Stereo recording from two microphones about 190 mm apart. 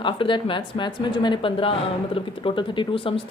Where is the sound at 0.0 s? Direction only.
25° left (ahead or behind).